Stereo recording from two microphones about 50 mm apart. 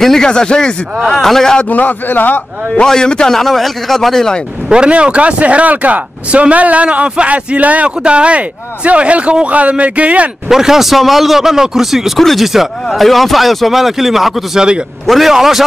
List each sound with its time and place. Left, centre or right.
0.0 s a man's voice: centre
1.7 s a man's voice: left
2.7 s a man's voice: centre
4.6 s speech: centre
10.5 s a man's voice: centre
15.0 s speech: centre